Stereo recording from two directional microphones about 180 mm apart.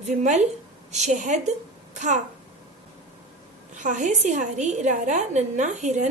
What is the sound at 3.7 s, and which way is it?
A woman's voice, 40° right (ahead or behind).